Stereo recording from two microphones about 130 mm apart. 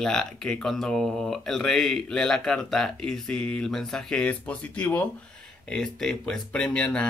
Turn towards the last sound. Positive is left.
turn(degrees=10)  # may be behind; listen again after turning